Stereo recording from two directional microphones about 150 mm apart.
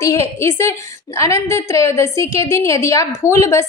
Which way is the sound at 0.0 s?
20° left (ahead or behind).